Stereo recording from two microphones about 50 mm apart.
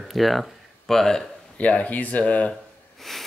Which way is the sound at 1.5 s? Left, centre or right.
Left.